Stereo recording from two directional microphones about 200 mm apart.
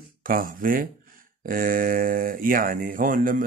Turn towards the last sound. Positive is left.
turn(degrees=-45)  # may be behind; listen again after turning